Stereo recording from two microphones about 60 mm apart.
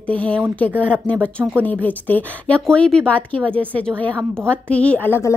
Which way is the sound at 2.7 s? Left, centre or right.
Centre.